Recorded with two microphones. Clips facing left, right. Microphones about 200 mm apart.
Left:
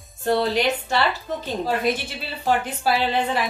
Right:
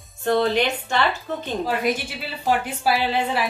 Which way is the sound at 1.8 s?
10° right (ahead or behind).